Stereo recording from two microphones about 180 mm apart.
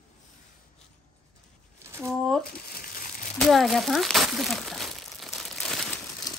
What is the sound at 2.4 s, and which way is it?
Crumpling, 55° left (ahead or behind).